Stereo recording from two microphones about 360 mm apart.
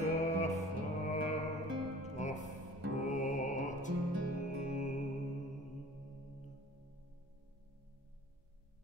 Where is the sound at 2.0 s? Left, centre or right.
Centre.